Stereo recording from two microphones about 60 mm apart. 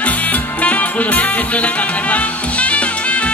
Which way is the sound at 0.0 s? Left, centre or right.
Left.